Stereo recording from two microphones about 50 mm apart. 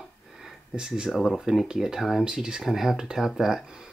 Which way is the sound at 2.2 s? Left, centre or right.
Centre.